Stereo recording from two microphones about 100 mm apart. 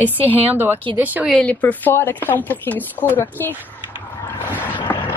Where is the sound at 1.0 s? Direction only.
15° right (ahead or behind).